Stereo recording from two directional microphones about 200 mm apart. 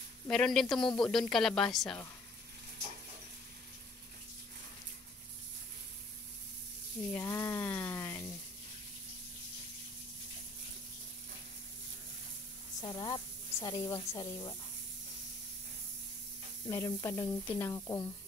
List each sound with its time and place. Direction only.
0.3 s speech: centre (ahead or behind)
7.1 s sizzle: 15° left (ahead or behind)
12.8 s a woman's voice: 20° left (ahead or behind)
16.6 s speech: 15° left (ahead or behind)